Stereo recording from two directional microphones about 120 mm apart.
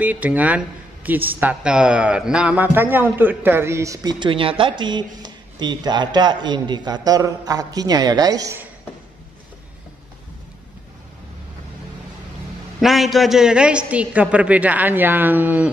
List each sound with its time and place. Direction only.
0.0 s speech: 15° right (ahead or behind); by 8.5 s 30° right (ahead or behind)
12.8 s a woman's voice: centre (ahead or behind)